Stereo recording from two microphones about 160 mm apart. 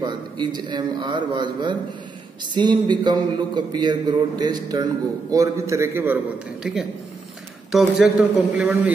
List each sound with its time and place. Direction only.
0.0 s a man's voice: 25° right (ahead or behind)
6.6 s a man's voice: 5° right (ahead or behind)